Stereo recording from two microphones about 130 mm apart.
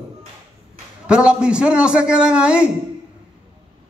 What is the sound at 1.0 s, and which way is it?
A man's voice, 10° right (ahead or behind).